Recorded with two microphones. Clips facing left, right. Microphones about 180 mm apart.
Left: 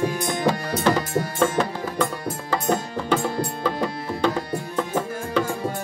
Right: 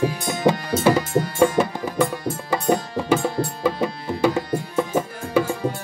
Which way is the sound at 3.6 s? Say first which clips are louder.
Right 4 dB; 10° right (ahead or behind).